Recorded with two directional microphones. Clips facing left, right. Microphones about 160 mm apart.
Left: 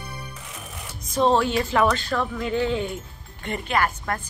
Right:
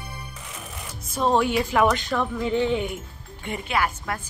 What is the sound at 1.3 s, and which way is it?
Speech, 10° right (ahead or behind).